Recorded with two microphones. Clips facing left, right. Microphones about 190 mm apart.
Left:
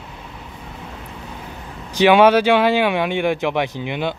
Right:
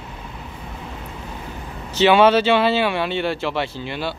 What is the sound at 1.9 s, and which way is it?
Speech, 15° left (ahead or behind).